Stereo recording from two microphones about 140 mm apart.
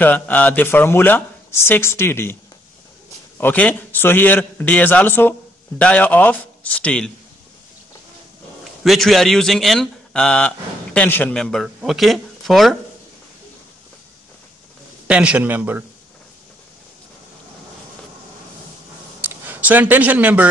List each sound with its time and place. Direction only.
0.0 s speech: 10° left (ahead or behind)
3.3 s speech: 10° left (ahead or behind)
8.8 s speech: centre (ahead or behind)
15.0 s a man's voice: 10° right (ahead or behind)
19.2 s speech: 15° right (ahead or behind)